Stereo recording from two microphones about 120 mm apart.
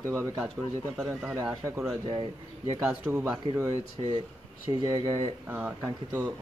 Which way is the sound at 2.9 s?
15° right (ahead or behind).